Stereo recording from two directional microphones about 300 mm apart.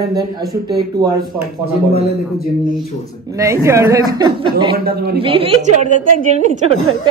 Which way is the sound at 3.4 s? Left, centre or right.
Centre.